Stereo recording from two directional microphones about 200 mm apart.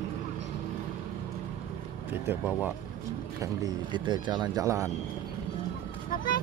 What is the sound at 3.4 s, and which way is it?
Speech, 20° right (ahead or behind).